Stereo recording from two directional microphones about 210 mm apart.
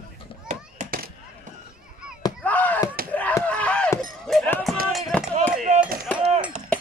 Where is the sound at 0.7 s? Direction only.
45° right (ahead or behind).